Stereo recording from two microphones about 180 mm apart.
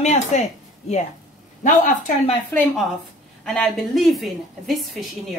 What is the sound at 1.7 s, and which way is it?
Speech, 45° left (ahead or behind).